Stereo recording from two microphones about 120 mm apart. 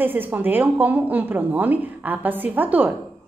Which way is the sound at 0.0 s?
15° right (ahead or behind).